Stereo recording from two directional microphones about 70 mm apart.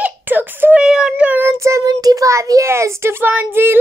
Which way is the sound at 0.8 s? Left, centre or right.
Centre.